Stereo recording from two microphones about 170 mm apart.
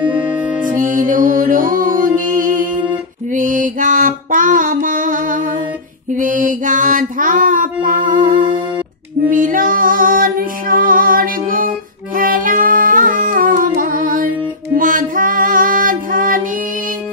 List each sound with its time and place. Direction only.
0.6 s music: 50° right (ahead or behind)
4.8 s humming: 50° right (ahead or behind)
6.1 s mantra: 50° right (ahead or behind)
9.3 s female singing: 55° right (ahead or behind)
12.2 s music: 55° right (ahead or behind)